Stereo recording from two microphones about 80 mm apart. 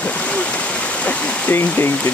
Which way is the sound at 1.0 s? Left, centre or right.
Left.